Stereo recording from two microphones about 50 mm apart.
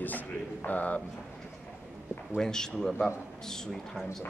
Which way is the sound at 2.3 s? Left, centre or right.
Centre.